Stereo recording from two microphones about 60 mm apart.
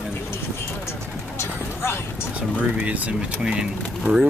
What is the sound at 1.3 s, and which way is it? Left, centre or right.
Vehicle, left.